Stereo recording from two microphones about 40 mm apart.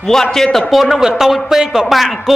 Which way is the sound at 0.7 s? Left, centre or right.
Centre.